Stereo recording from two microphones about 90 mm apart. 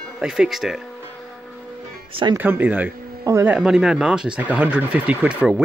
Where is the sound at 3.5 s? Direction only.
10° right (ahead or behind).